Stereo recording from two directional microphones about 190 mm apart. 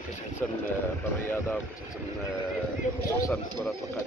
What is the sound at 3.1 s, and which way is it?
Speech, 15° left (ahead or behind).